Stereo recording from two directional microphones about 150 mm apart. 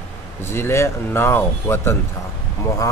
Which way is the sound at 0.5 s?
15° left (ahead or behind).